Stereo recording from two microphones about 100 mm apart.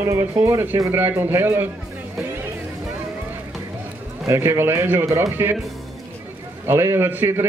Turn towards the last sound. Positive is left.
turn(degrees=-25)  # may be behind; listen again after turning